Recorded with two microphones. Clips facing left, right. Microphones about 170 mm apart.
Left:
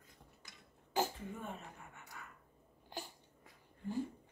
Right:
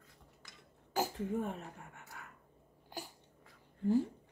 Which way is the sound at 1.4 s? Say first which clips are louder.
Right 7 dB; 70° right (ahead or behind).